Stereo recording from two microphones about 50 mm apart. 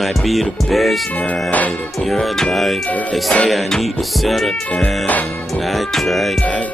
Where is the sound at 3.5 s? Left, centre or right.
Centre.